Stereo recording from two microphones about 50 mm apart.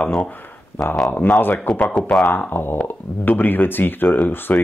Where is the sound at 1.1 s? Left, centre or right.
Left.